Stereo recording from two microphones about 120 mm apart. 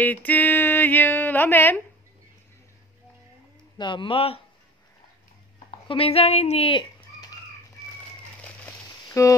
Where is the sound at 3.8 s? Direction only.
40° left (ahead or behind).